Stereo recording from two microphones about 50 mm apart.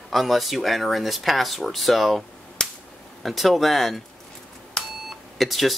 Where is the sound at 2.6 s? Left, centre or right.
Centre.